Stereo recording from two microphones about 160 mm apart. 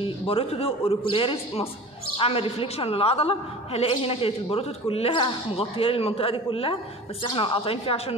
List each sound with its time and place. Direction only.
0.0 s a woman's voice: 35° left (ahead or behind)